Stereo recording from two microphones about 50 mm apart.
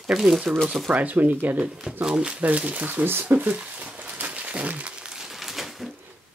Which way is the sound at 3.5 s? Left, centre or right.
Right.